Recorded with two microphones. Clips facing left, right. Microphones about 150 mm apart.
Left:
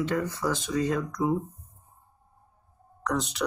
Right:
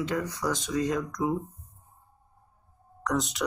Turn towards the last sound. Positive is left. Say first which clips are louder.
# right 1 dB
turn(degrees=0)  # may be behind; listen again after turning